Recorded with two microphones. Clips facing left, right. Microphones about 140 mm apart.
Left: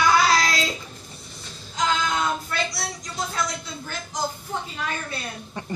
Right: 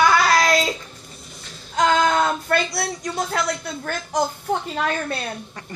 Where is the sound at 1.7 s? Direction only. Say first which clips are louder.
Right 7 dB; 60° right (ahead or behind).